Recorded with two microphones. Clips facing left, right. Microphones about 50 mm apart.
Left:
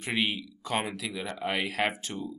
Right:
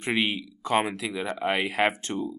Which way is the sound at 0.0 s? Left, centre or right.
Centre.